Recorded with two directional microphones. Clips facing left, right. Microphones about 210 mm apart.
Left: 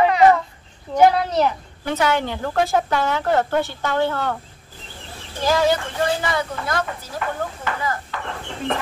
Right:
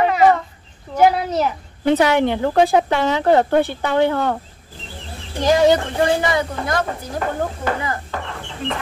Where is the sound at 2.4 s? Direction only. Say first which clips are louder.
Right 5 dB; 15° right (ahead or behind).